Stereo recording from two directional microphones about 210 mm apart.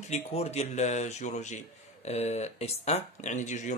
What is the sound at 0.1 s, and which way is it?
Speech, 30° left (ahead or behind).